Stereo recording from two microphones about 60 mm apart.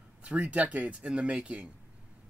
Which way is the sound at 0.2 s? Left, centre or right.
Right.